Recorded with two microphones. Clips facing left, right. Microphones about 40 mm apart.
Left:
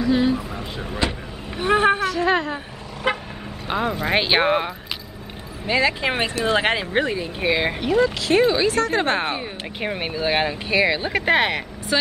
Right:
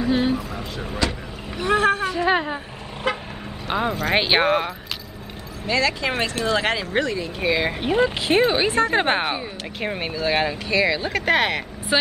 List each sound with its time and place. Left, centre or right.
0.1 s a sound: centre
1.0 s speech: centre
2.0 s a woman's voice: centre
3.1 s vehicle: left
3.6 s speech: centre
5.7 s speech: centre
7.9 s a woman's voice: right
9.8 s speech: centre
11.9 s a woman's voice: right